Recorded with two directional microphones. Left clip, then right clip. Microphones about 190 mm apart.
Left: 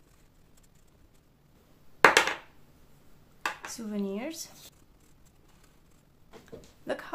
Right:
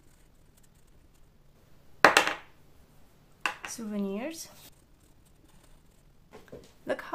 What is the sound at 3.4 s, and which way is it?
Speech, 10° right (ahead or behind).